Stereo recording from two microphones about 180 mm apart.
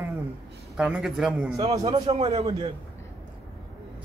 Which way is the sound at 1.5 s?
25° right (ahead or behind).